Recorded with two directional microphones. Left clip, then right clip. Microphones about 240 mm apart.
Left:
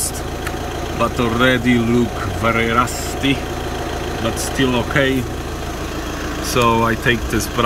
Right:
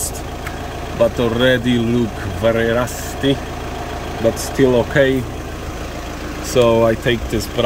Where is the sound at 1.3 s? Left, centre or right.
Centre.